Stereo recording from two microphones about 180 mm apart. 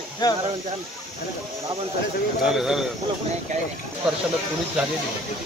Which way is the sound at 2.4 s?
Centre (ahead or behind).